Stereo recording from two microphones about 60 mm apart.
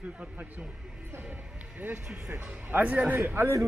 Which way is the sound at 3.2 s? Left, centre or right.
Right.